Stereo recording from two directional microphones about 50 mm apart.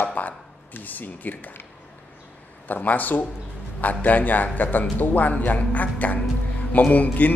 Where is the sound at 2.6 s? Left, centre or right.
Left.